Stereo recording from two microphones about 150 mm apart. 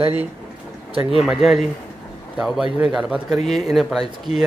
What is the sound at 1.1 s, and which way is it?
Speech, 5° right (ahead or behind).